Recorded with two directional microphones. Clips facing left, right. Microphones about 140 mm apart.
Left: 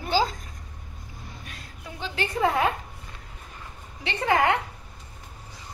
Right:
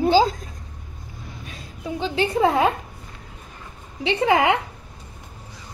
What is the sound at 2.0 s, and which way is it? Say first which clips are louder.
Speech: right 6 dB; 20° right (ahead or behind).